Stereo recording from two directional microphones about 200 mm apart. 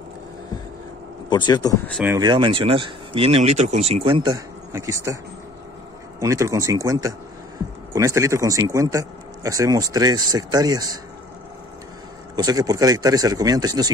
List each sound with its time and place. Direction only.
1.3 s speech: 20° left (ahead or behind)
2.0 s a man's voice: 20° right (ahead or behind)
12.4 s a man's voice: 20° right (ahead or behind)